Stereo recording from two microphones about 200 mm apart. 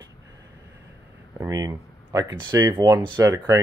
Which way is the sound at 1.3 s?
15° right (ahead or behind).